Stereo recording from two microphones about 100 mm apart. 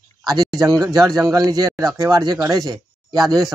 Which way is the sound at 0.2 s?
40° right (ahead or behind).